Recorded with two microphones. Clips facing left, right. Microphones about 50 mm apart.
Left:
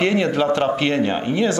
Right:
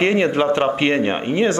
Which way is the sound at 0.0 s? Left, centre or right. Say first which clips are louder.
Right 2 dB; right.